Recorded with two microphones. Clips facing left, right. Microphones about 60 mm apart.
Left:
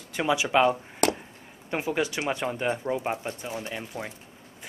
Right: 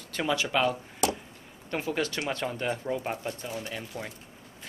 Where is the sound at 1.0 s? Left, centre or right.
Left.